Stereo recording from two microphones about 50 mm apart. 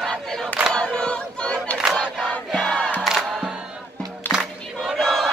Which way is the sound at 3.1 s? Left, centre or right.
Centre.